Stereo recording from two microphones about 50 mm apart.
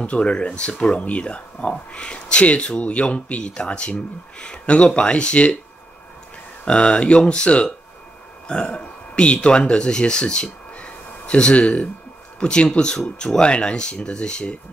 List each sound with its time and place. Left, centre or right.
0.0 s speech: left
6.6 s speech: left